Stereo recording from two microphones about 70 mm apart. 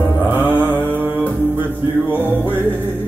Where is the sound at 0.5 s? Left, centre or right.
Right.